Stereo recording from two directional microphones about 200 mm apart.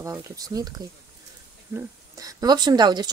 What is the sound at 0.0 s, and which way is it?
Speech, 15° right (ahead or behind).